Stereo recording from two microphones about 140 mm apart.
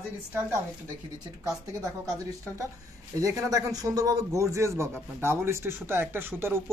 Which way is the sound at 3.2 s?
25° right (ahead or behind).